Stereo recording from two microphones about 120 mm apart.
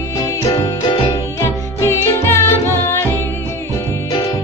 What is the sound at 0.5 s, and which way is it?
Music, 40° left (ahead or behind).